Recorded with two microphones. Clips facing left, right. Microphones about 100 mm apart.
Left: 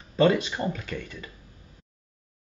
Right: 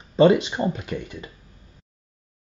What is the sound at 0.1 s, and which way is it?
Speech, 20° right (ahead or behind).